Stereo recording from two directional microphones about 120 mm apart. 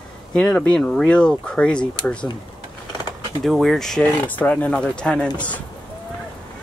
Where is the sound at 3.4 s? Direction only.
Centre (ahead or behind).